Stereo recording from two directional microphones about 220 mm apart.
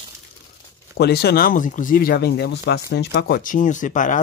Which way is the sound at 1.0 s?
45° left (ahead or behind).